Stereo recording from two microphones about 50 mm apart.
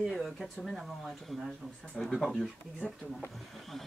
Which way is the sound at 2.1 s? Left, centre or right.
Centre.